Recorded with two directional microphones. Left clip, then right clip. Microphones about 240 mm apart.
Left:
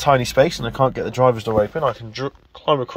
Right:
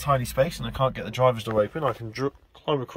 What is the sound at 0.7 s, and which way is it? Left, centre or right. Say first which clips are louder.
Speech: left 7 dB; centre.